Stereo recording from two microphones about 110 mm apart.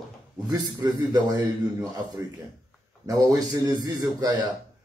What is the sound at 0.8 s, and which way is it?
Speech, 40° right (ahead or behind).